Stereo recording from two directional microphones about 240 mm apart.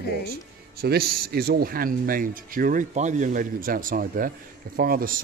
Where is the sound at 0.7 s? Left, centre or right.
Right.